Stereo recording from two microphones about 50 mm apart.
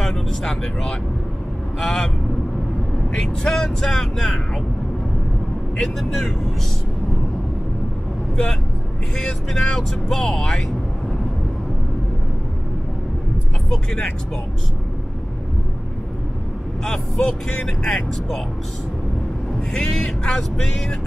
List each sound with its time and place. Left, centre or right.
0.0 s speech: centre
3.2 s speech: centre
5.8 s speech: centre
9.2 s speech: centre
13.7 s speech: centre
16.8 s speech: centre
19.7 s speech: centre